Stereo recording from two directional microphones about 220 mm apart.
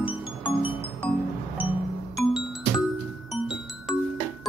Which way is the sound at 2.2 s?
Centre (ahead or behind).